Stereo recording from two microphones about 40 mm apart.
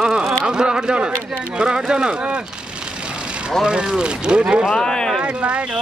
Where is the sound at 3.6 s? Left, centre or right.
Right.